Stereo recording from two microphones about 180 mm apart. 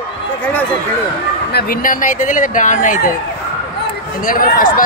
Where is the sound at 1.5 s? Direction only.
50° left (ahead or behind).